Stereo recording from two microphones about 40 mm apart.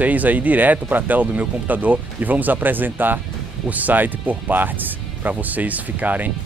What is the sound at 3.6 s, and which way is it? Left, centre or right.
Speech, right.